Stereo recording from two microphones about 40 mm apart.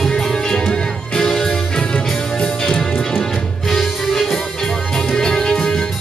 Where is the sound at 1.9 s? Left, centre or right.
Left.